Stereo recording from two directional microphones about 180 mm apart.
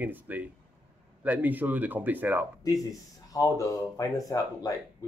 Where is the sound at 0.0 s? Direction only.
10° right (ahead or behind).